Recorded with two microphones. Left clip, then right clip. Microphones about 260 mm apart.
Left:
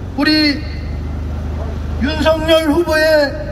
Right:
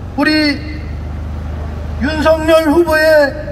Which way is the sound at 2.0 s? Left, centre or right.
Centre.